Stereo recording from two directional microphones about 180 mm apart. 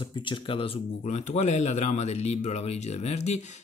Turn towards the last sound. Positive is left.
turn(degrees=40)  # may be behind; listen again after turning